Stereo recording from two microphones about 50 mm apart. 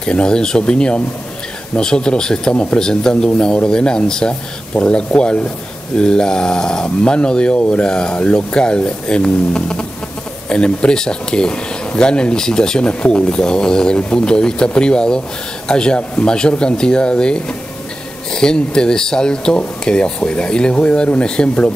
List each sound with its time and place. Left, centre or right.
0.0 s speech: centre